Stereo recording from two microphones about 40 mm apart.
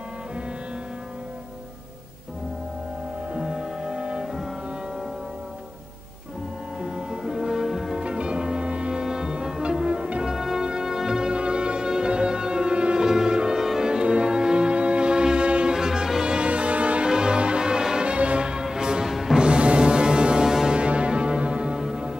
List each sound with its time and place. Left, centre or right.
3.3 s music: centre
6.8 s music: centre
7.9 s music: right
9.0 s music: centre
9.8 s music: right
10.2 s music: centre
15.7 s music: centre
21.7 s music: centre